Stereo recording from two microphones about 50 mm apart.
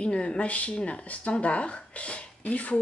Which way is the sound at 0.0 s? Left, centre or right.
Centre.